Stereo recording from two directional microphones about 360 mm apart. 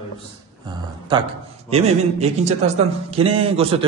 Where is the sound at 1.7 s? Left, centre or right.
Centre.